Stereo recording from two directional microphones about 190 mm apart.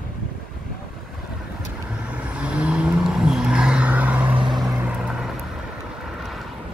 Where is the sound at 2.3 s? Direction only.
5° right (ahead or behind).